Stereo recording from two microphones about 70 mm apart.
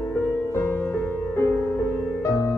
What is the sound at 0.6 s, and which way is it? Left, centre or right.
Music, left.